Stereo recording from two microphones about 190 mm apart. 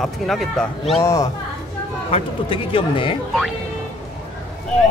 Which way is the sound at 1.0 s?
15° left (ahead or behind).